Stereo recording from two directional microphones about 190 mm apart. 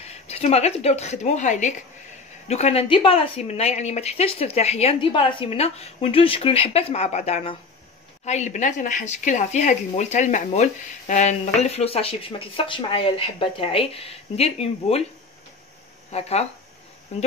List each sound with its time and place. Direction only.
0.0 s a woman's voice: 35° left (ahead or behind)
16.1 s speech: 35° left (ahead or behind)